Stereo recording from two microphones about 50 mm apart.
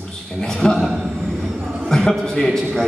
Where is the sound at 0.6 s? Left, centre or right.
Centre.